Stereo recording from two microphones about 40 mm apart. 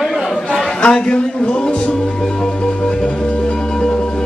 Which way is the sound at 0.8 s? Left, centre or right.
Left.